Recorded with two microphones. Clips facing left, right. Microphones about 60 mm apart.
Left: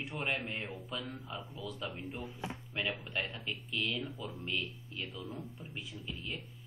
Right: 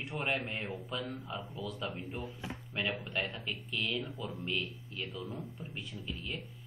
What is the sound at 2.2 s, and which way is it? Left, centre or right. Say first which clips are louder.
Speech: left 1 dB; left.